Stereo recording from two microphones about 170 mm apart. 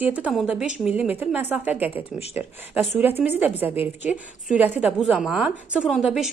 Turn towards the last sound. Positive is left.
turn(degrees=-5)  # may be behind; listen again after turning